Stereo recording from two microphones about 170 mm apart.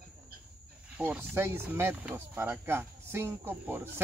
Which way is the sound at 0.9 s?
10° right (ahead or behind).